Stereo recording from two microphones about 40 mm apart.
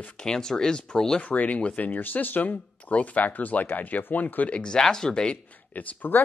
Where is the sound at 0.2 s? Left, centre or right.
Centre.